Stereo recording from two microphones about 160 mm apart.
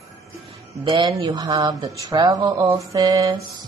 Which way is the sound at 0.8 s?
30° right (ahead or behind).